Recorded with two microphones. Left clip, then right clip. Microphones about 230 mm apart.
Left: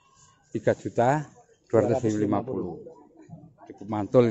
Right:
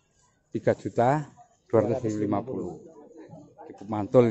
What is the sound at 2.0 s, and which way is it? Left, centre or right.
Speech, centre.